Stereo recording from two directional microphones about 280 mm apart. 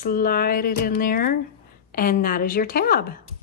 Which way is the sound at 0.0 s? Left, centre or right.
Left.